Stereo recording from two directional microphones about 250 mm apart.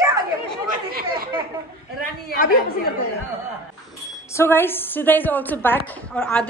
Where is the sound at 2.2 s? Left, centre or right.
Left.